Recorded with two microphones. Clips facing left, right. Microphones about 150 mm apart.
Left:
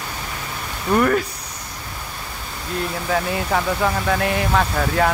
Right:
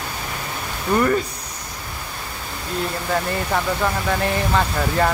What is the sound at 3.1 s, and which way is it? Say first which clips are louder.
Speech: left 1 dB; centre (ahead or behind).